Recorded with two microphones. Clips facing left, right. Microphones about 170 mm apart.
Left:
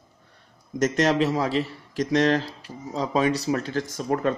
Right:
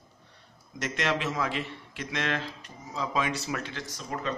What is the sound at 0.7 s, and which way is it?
A man's voice, 40° left (ahead or behind).